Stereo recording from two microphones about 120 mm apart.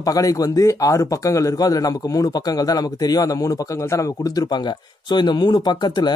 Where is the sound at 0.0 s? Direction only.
30° left (ahead or behind).